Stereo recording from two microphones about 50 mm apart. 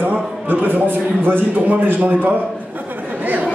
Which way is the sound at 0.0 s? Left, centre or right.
Right.